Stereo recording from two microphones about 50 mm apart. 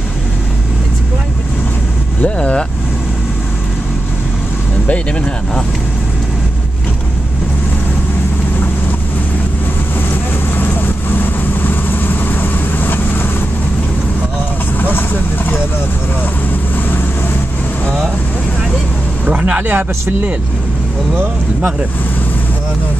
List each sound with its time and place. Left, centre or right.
2.2 s speech: left
11.6 s vehicle: left
14.8 s speech: left
19.2 s speech: right